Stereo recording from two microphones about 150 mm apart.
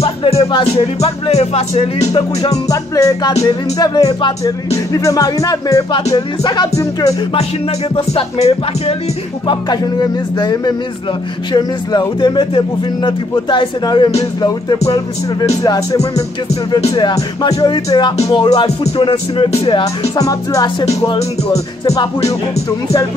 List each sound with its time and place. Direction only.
0.0 s music: 40° left (ahead or behind)
2.7 s speech: 20° left (ahead or behind)
7.9 s speech: 40° left (ahead or behind)
9.5 s speech: 25° left (ahead or behind)
15.6 s speech: 20° left (ahead or behind)
18.3 s music: 30° left (ahead or behind)
20.2 s speech: 25° left (ahead or behind)